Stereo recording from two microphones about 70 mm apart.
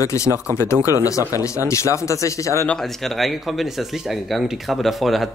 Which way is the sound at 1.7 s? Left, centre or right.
Left.